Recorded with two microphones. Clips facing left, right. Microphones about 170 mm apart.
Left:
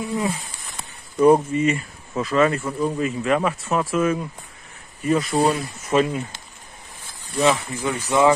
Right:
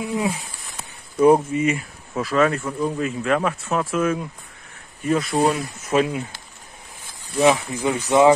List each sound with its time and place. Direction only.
0.0 s speech: 10° right (ahead or behind)
7.3 s speech: 15° right (ahead or behind)